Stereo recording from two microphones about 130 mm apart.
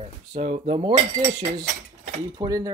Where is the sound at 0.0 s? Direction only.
55° right (ahead or behind).